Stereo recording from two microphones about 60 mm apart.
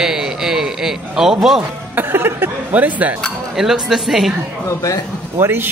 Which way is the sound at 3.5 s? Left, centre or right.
Centre.